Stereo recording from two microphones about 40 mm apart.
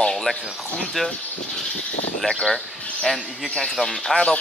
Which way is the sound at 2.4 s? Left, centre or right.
Centre.